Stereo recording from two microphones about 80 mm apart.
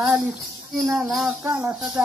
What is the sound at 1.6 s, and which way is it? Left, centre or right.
Music, centre.